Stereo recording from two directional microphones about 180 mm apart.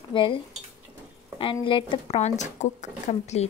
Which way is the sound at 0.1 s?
25° left (ahead or behind).